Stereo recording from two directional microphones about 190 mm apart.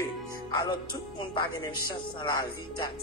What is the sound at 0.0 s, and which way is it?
Music, 25° left (ahead or behind).